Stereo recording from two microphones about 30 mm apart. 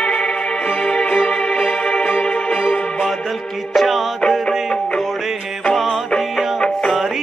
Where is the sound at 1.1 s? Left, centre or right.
Left.